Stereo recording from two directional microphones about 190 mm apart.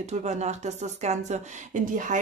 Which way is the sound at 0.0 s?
35° right (ahead or behind).